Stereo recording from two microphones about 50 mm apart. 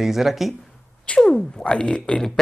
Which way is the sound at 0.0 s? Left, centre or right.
Centre.